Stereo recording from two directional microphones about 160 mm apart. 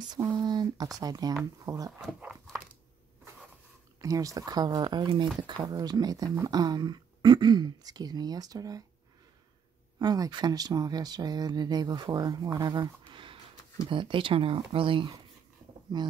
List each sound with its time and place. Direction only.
0.1 s speech: 25° right (ahead or behind)
2.0 s speech: centre (ahead or behind)
4.0 s speech: 20° right (ahead or behind)
9.9 s speech: 25° right (ahead or behind)